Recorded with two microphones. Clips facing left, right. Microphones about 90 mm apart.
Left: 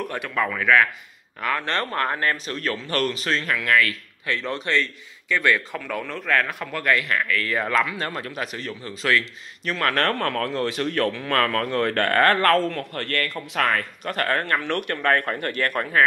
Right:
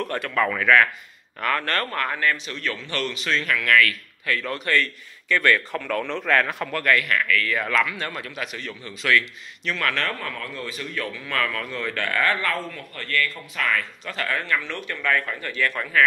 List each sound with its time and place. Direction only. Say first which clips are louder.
0.0 s a man's voice: right 2 dB; 10° left (ahead or behind)
6.8 s speech: even; 20° left (ahead or behind); by 10.0 s 40° left (ahead or behind)
10.0 s a man's voice: left 7 dB; 65° left (ahead or behind); by 15.9 s 50° left (ahead or behind)